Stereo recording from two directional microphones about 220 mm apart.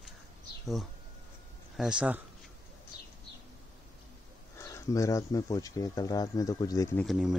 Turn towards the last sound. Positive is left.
turn(degrees=0)  # may be behind; listen again after turning